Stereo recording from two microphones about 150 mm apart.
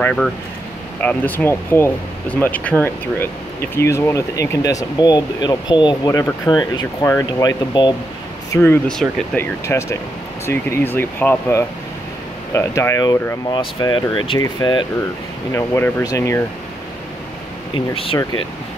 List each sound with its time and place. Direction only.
0.0 s speech: 5° left (ahead or behind); by 7.9 s 30° left (ahead or behind)
8.5 s speech: 15° left (ahead or behind); by 14.9 s 30° left (ahead or behind)
15.5 s speech: 15° left (ahead or behind)
17.9 s speech: 35° left (ahead or behind)